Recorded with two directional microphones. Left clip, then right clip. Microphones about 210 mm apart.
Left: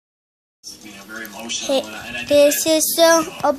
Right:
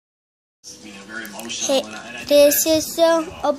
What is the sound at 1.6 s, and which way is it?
A child's voice, centre (ahead or behind).